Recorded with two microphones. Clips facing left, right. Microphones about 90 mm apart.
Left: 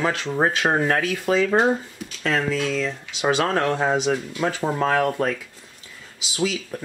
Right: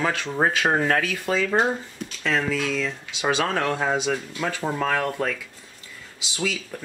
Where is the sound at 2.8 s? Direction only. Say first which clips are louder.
Left 2 dB; 10° left (ahead or behind).